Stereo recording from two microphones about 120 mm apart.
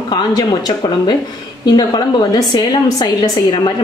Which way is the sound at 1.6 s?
40° left (ahead or behind).